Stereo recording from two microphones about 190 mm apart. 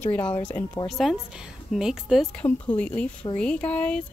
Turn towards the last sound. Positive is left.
turn(degrees=5)  # may be behind; listen again after turning